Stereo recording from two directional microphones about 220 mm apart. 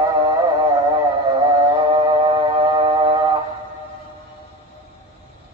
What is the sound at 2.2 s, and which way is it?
Music, 25° right (ahead or behind).